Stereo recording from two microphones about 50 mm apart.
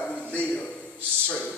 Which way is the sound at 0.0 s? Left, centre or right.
Left.